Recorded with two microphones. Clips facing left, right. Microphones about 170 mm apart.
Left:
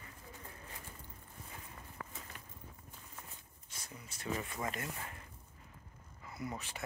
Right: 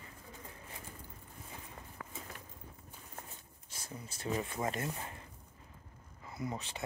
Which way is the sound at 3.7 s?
30° right (ahead or behind).